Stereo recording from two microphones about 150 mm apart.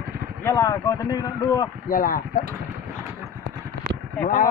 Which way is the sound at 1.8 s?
70° left (ahead or behind).